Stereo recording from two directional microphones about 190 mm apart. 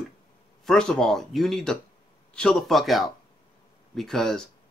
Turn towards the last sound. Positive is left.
turn(degrees=0)  # may be behind; listen again after turning